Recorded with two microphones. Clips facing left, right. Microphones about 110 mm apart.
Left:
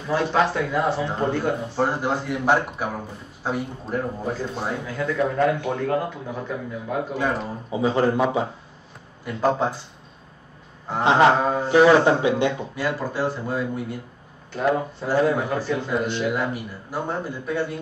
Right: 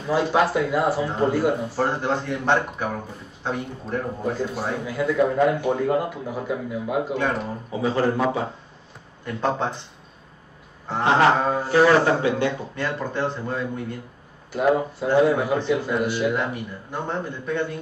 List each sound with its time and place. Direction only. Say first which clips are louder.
0.1 s speech: right 1 dB; 10° right (ahead or behind)
1.9 s a man's voice: even; 10° left (ahead or behind)
4.6 s speech: right 1 dB; 5° right (ahead or behind)
7.7 s a man's voice: left 2 dB; 20° left (ahead or behind)
9.2 s speech: left 3 dB; 5° left (ahead or behind)
10.9 s a man's voice: left 1 dB; 15° left (ahead or behind)
12.7 s a man's voice: left 1 dB; 5° left (ahead or behind)
14.5 s speech: right 2 dB; 10° right (ahead or behind)
16.3 s a man's voice: even; 5° left (ahead or behind)